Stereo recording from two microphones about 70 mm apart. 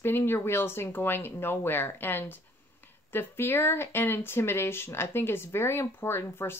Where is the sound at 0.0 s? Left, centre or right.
Left.